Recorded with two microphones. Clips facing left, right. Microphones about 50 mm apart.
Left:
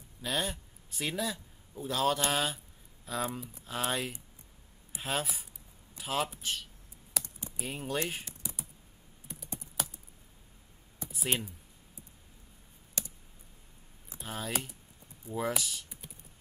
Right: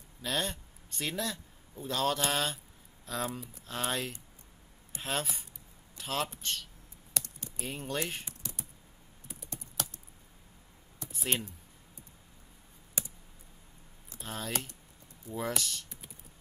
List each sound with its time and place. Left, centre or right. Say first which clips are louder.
0.2 s a man's voice: even; centre
7.2 s typing: left 1 dB; centre
7.6 s speech: left 1 dB; centre
8.4 s computer keyboard: left 1 dB; centre
9.6 s typing: left 1 dB; centre
11.1 s speech: left 1 dB; centre
13.0 s computer keyboard: right 1 dB; centre
14.1 s speech: left 1 dB; centre